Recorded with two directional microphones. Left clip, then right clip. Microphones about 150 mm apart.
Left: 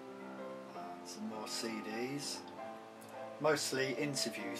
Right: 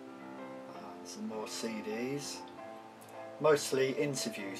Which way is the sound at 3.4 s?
5° left (ahead or behind).